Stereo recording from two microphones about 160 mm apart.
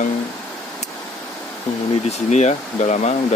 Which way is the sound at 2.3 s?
45° left (ahead or behind).